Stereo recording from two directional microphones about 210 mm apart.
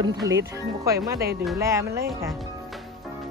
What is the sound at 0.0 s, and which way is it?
Speech, 20° right (ahead or behind).